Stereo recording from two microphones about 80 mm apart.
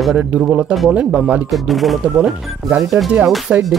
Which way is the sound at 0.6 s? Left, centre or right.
Centre.